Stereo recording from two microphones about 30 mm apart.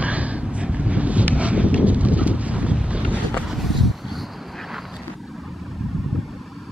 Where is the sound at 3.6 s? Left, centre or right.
Centre.